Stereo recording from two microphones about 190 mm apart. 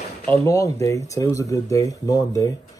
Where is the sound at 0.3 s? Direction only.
15° left (ahead or behind).